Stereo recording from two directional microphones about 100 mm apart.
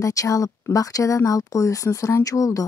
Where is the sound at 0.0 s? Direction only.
35° left (ahead or behind).